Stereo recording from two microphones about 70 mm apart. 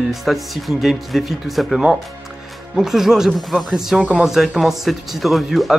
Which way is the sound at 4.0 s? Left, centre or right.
Centre.